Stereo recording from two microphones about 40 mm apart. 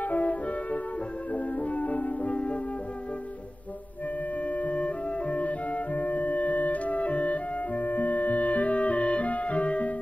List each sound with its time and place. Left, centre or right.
0.0 s music: left
4.5 s music: left